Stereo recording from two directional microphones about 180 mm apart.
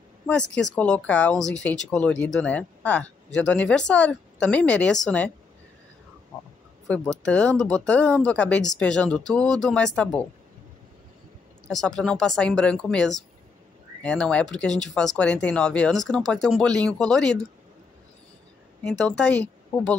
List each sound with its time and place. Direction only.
0.3 s speech: 5° left (ahead or behind)
6.9 s speech: 5° left (ahead or behind)
11.6 s speech: 5° left (ahead or behind)
18.9 s speech: 5° left (ahead or behind)